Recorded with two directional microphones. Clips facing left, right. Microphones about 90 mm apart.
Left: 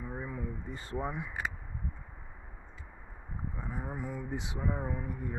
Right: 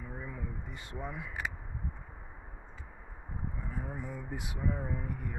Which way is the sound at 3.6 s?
15° left (ahead or behind).